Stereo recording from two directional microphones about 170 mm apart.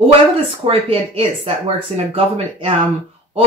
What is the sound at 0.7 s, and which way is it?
Speech, 35° right (ahead or behind).